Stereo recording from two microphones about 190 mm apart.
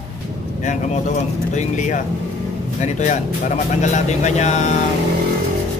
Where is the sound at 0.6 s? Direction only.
40° left (ahead or behind).